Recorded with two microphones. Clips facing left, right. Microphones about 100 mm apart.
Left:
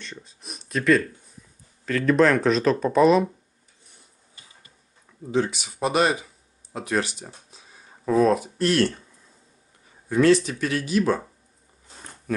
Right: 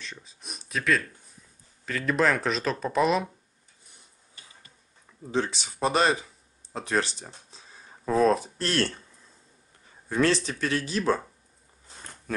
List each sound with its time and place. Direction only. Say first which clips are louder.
0.0 s speech: left 3 dB; centre (ahead or behind)
5.5 s speech: left 1 dB; 30° right (ahead or behind)
10.0 s speech: left 6 dB; 35° right (ahead or behind)